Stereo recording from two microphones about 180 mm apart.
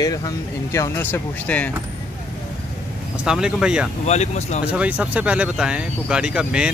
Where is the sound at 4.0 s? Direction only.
40° left (ahead or behind).